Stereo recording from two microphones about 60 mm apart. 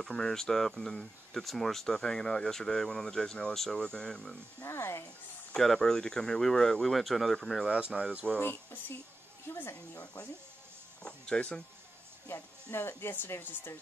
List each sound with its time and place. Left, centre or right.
0.0 s speech: centre
4.6 s speech: left
5.6 s speech: centre
7.6 s speech: centre
9.5 s speech: left
11.0 s speech: centre
12.7 s speech: left